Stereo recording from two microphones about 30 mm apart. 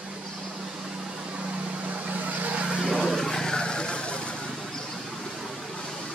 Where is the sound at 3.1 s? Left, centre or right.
Centre; by 4.5 s left.